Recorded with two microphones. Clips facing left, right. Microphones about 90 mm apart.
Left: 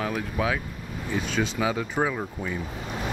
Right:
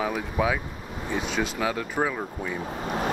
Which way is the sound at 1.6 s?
5° left (ahead or behind).